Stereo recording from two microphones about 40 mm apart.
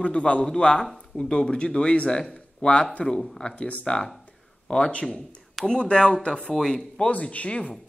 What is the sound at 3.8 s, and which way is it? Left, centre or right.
Speech, centre.